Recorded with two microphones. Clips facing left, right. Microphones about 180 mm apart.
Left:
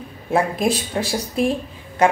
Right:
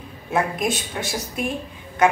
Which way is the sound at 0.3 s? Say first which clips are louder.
Left 4 dB; 30° left (ahead or behind).